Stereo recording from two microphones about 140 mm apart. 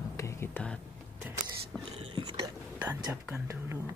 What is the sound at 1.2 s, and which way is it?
Speech, 15° right (ahead or behind).